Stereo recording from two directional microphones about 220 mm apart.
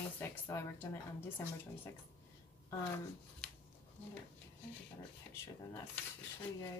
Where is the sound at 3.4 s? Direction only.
5° left (ahead or behind).